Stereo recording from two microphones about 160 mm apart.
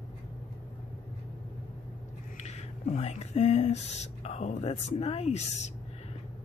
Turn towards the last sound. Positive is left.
turn(degrees=40)  # may be behind; listen again after turning